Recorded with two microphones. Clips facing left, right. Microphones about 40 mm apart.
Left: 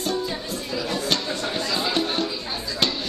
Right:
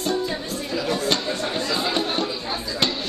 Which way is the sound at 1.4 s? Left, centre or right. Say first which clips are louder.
Right 1 dB; centre.